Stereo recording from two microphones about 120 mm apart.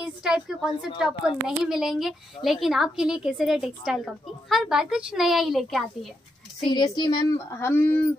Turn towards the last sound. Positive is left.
turn(degrees=15)  # may be behind; listen again after turning